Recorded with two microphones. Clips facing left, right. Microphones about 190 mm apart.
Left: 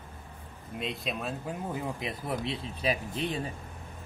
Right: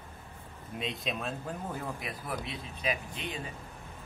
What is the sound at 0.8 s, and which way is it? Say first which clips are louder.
Speech: left 1 dB; centre (ahead or behind).